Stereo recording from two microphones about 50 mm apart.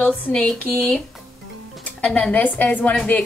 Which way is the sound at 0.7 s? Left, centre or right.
Centre.